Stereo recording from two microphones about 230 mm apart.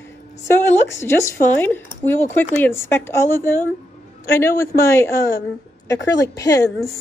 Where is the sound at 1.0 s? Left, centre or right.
Centre.